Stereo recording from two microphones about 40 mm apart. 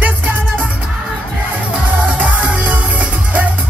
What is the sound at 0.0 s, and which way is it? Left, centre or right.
Music, right.